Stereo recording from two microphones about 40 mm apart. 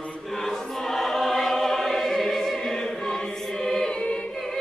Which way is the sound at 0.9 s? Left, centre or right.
Centre.